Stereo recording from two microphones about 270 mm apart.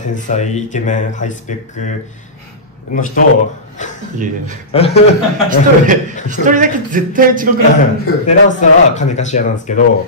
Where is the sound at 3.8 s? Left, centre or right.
Left.